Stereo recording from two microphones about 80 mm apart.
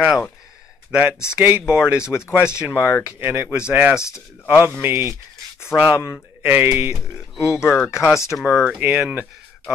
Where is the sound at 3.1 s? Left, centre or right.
Right.